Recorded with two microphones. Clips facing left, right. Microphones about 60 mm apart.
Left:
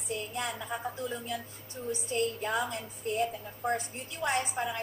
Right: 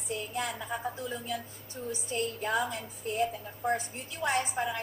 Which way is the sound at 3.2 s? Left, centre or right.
Centre.